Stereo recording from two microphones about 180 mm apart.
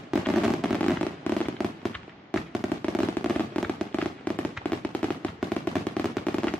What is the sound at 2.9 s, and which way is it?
Fireworks, 5° left (ahead or behind).